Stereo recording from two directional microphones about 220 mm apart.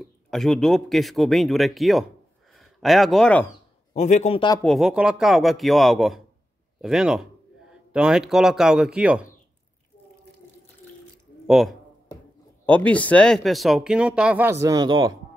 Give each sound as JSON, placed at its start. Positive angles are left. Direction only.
{"t": 0.0, "sound": "speech", "side_deg": 0}
{"t": 3.9, "sound": "speech", "side_deg": 30}
{"t": 4.6, "sound": "speech", "side_deg": 0}
{"t": 11.4, "sound": "speech", "side_deg": 0}